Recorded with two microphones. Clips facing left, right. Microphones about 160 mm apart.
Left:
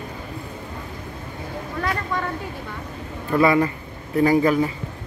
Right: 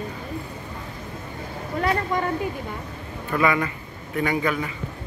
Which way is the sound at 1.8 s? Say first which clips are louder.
Right 3 dB; 20° right (ahead or behind).